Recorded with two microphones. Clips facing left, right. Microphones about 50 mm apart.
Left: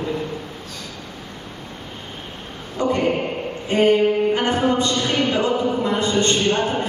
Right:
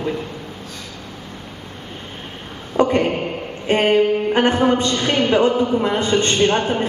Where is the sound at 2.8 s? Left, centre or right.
Right.